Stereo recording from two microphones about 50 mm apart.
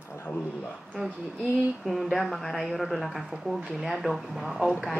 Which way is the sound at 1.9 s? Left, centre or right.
Centre.